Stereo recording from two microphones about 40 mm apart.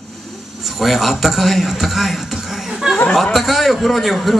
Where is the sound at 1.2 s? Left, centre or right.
Centre.